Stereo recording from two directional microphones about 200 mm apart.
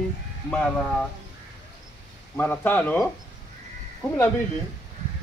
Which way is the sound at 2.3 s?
10° left (ahead or behind).